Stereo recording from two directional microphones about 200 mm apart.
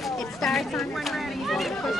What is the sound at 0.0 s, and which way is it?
Speech, centre (ahead or behind).